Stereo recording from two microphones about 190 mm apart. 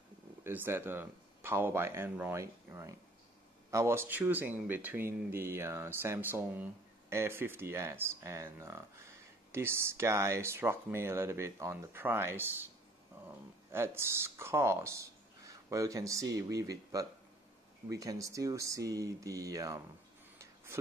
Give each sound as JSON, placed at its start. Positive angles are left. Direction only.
{"t": 0.4, "sound": "speech", "side_deg": -10}
{"t": 13.7, "sound": "speech", "side_deg": -15}
{"t": 20.3, "sound": "a sound", "side_deg": -15}